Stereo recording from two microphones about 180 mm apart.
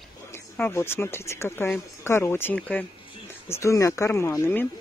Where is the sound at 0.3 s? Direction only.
15° left (ahead or behind).